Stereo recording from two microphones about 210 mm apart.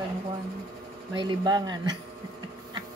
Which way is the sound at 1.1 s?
20° right (ahead or behind).